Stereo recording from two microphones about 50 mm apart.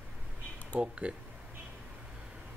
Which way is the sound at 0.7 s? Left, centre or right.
Right.